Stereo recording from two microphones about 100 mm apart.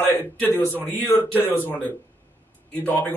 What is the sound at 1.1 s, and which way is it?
A man's voice, 20° left (ahead or behind).